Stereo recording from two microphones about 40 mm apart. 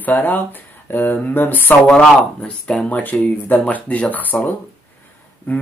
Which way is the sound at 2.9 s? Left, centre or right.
Left.